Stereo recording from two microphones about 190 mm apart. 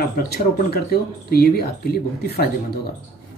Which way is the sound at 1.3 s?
55° left (ahead or behind).